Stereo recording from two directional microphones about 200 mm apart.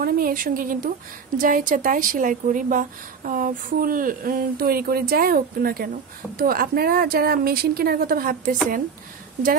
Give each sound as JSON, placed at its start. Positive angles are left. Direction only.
{"t": 0.0, "sound": "a woman's voice", "side_deg": -45}